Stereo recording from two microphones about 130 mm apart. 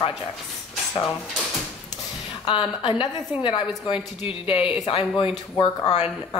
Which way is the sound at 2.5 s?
40° left (ahead or behind).